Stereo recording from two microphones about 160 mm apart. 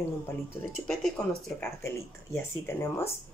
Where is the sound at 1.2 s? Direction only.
5° left (ahead or behind).